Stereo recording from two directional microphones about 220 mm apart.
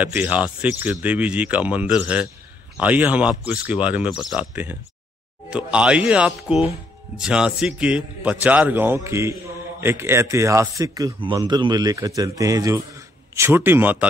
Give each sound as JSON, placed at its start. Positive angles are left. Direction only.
{"t": 0.0, "sound": "a man's voice", "side_deg": -5}